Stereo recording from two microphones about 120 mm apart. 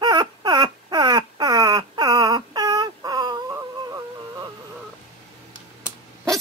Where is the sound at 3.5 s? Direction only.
25° right (ahead or behind).